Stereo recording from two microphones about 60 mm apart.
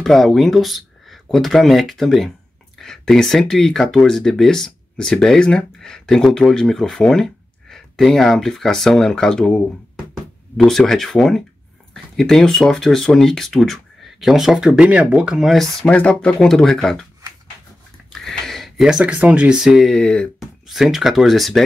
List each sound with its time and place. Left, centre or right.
0.0 s speech: centre
10.6 s speech: centre
14.2 s speech: centre
14.8 s speech: centre
15.4 s speech: centre
15.9 s speech: left
18.2 s a sound: centre
18.9 s speech: right
19.5 s speech: centre
19.8 s speech: centre
20.3 s speech: centre